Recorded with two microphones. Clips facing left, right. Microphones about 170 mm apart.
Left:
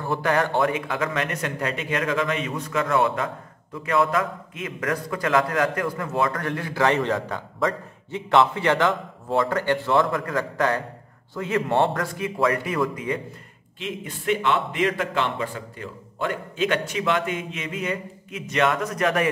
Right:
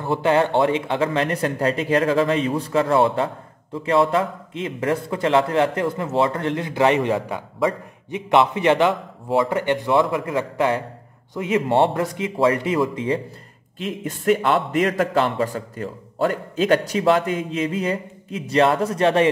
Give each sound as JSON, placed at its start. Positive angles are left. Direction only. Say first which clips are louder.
{"t": 0.0, "sound": "a man's voice", "louder": "right 4 dB", "side_deg": -20}
{"t": 13.7, "sound": "a man's voice", "louder": "right 4 dB", "side_deg": -45}